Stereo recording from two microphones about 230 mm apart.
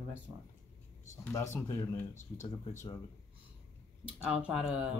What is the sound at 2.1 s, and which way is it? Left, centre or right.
Speech, left.